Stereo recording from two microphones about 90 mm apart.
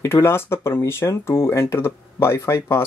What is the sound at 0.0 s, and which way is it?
Speech, 25° left (ahead or behind).